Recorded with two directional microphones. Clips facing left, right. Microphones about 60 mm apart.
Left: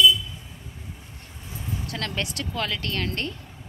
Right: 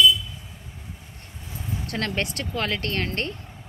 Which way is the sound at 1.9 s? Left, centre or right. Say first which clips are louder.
Right 4 dB; right.